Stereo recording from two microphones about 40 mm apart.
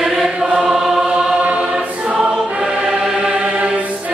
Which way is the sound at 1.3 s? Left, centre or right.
Right.